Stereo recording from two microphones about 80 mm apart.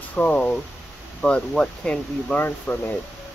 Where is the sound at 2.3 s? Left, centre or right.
Left.